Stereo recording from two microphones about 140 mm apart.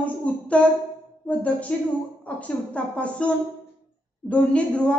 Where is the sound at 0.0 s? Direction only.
10° left (ahead or behind).